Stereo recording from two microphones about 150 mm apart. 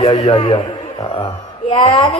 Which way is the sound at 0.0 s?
40° left (ahead or behind).